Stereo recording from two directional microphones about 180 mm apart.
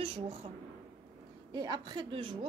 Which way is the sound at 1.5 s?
25° right (ahead or behind).